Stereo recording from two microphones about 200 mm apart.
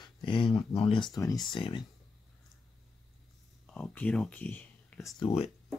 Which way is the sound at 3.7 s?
5° left (ahead or behind).